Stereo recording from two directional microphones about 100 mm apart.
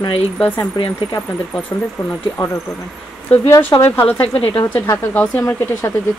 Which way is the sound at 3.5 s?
20° left (ahead or behind).